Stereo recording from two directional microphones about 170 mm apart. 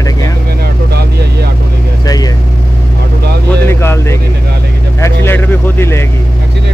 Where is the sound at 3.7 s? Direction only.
15° left (ahead or behind).